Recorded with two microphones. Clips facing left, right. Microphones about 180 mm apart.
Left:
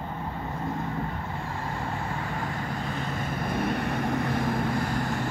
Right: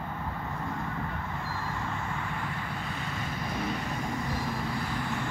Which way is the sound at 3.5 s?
60° left (ahead or behind).